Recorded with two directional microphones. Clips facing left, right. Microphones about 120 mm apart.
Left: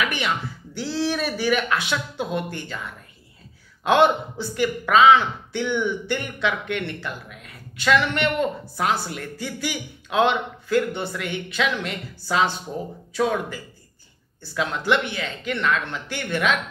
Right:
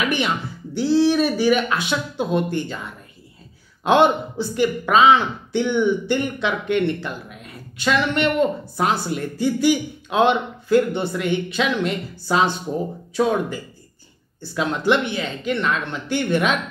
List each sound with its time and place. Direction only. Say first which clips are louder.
0.0 s a sound: right 4 dB; 25° right (ahead or behind)
0.7 s speech: right 8 dB; 20° right (ahead or behind)
3.8 s speech: right 2 dB; 20° right (ahead or behind)